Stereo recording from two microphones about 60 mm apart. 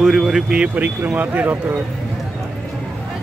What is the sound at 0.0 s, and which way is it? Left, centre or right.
Speech, centre.